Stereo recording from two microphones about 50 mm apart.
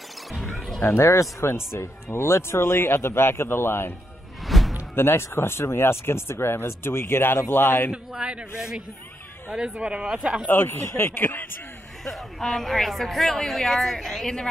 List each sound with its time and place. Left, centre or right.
0.3 s music: centre
0.8 s speech: left
4.5 s music: centre
4.9 s speech: left
7.9 s speech: right
9.8 s speech: right
10.5 s speech: left
11.1 s a sound: left
12.0 s a woman's voice: centre